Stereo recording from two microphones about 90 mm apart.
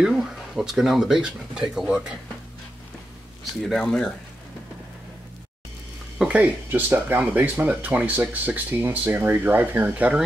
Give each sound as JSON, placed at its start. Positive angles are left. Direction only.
{"t": 0.0, "sound": "speech", "side_deg": -5}
{"t": 3.6, "sound": "speech", "side_deg": 5}
{"t": 6.1, "sound": "speech", "side_deg": -15}